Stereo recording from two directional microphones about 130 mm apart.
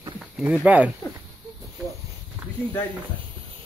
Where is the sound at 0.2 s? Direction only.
10° right (ahead or behind).